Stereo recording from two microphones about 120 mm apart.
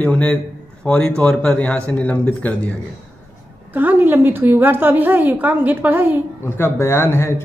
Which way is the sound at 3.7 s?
15° right (ahead or behind).